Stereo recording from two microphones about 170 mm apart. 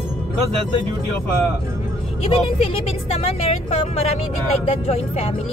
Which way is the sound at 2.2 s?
35° left (ahead or behind).